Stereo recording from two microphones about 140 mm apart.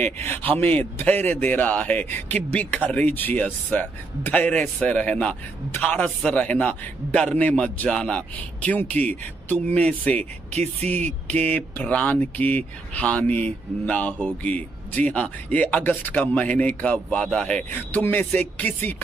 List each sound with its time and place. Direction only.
0.2 s a man's voice: 15° left (ahead or behind)
10.5 s speech: 50° right (ahead or behind)
11.2 s a man's voice: 10° left (ahead or behind)